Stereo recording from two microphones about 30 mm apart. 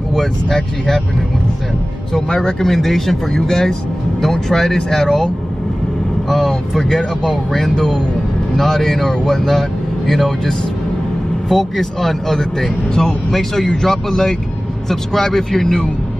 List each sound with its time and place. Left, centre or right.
2.3 s speech: left
2.7 s speech: centre; by 5.1 s left
6.2 s vehicle: centre
7.5 s speech: centre